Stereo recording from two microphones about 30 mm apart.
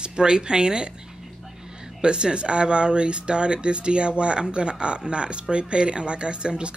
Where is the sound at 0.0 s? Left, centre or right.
Right.